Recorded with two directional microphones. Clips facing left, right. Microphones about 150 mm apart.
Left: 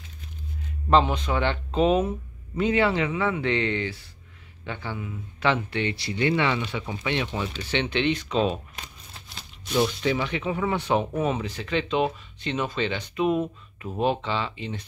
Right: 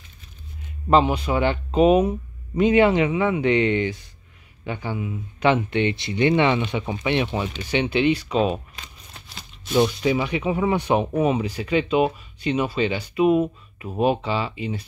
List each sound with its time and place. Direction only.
0.8 s speech: 10° right (ahead or behind)
9.8 s speech: 10° right (ahead or behind)